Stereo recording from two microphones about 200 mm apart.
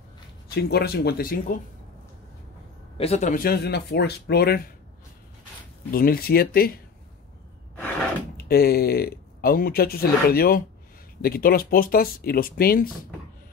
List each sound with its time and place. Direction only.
0.6 s speech: 55° left (ahead or behind)
3.0 s speech: 35° left (ahead or behind); by 4.6 s 55° left (ahead or behind)
5.9 s speech: 45° left (ahead or behind)
8.5 s speech: 50° left (ahead or behind)